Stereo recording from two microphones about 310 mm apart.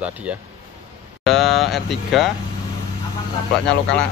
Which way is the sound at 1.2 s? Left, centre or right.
Centre.